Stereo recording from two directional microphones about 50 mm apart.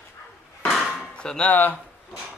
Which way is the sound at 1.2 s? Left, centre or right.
Centre.